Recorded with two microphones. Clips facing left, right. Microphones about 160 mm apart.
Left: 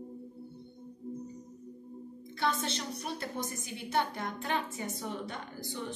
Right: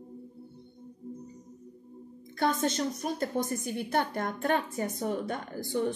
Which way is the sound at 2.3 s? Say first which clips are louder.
Right 5 dB; 50° right (ahead or behind).